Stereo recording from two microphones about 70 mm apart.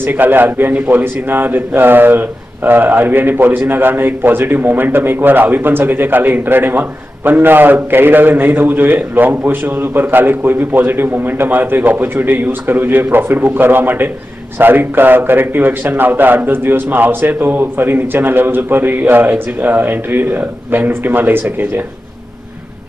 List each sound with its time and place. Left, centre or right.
0.0 s a man's voice: right